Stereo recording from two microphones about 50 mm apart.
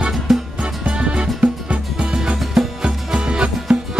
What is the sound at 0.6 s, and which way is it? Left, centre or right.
Music, right.